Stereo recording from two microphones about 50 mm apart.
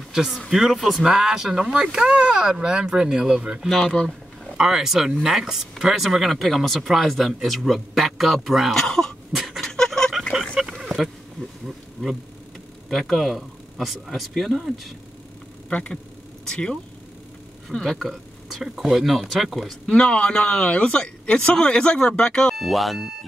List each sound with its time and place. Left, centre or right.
0.1 s speech: centre
1.0 s speech: centre
3.8 s speech: centre
4.6 s speech: centre
8.7 s speech: centre
9.3 s a sound: centre
9.7 s fowl: centre
10.7 s a sound: centre
12.9 s speech: centre
15.7 s speech: left
17.7 s speech: centre
19.9 s speech: centre
22.6 s speech: centre